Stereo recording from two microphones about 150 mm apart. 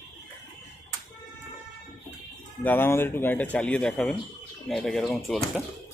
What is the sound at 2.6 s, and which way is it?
Speech, 15° left (ahead or behind).